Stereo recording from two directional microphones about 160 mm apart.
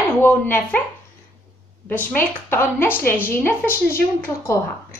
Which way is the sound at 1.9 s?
10° left (ahead or behind).